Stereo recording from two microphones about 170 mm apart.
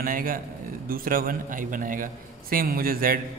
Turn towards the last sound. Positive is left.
turn(degrees=-60)  # may be behind; listen again after turning